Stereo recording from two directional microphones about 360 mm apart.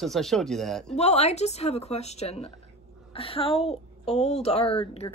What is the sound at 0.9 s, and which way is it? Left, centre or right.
A woman's voice, centre.